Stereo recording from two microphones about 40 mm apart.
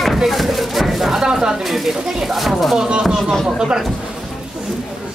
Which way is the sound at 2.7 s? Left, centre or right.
Centre.